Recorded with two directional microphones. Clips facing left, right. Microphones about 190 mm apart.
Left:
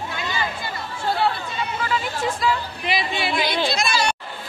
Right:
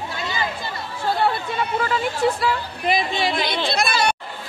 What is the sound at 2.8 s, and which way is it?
Speech, 50° right (ahead or behind).